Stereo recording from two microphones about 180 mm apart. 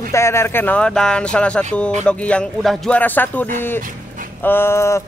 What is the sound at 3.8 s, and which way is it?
Dog, 50° right (ahead or behind).